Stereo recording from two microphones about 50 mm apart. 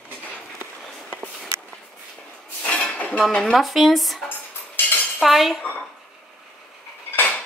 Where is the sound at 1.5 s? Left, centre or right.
Right.